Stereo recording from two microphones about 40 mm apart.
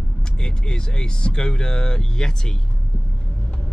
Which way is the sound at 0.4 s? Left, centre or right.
Left.